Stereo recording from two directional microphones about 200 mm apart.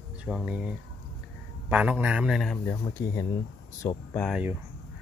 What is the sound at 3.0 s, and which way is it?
Speech, 15° left (ahead or behind).